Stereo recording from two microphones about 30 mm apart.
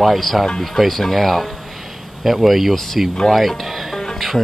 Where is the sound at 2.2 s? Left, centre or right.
Centre.